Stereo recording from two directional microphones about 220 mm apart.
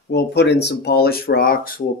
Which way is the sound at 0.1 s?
50° left (ahead or behind).